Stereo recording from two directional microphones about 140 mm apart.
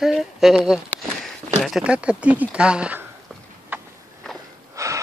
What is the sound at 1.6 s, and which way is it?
Speech, 5° right (ahead or behind).